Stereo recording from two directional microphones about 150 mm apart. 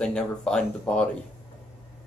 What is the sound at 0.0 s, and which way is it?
Speech, 5° left (ahead or behind).